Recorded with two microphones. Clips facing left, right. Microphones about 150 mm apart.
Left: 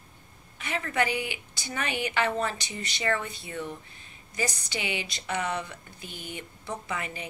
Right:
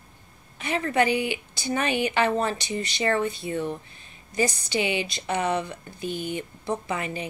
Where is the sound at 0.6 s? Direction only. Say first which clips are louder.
Right 5 dB; 30° right (ahead or behind).